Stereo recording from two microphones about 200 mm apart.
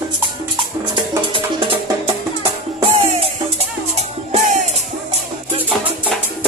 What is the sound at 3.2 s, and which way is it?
Music, 30° right (ahead or behind).